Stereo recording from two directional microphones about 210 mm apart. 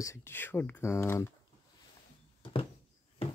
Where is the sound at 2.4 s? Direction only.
25° left (ahead or behind).